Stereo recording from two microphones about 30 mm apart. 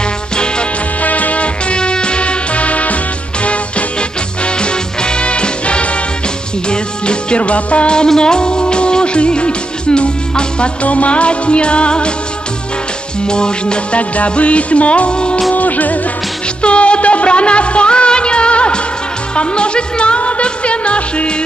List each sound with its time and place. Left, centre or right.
1.0 s music: left
1.8 s music: left
4.5 s music: left
7.3 s music: left
8.2 s music: left
13.3 s music: left
13.9 s music: left
15.5 s music: left
16.6 s music: left